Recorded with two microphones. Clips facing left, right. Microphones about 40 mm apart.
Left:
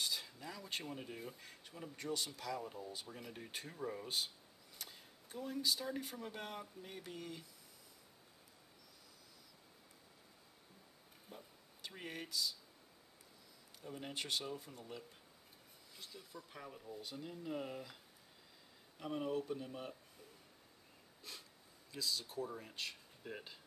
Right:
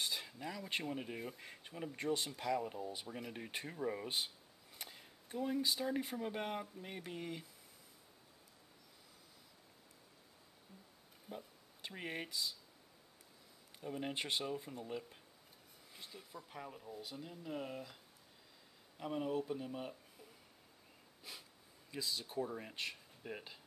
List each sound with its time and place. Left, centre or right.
0.0 s a sound: right
0.8 s speech: right
4.8 s a sound: centre
5.4 s speech: right
11.2 s speech: right
13.8 s speech: right; by 17.9 s centre
18.9 s speech: centre
21.2 s a sound: centre
21.9 s speech: right